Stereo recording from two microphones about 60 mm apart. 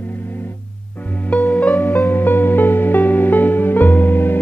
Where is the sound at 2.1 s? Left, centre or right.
Left.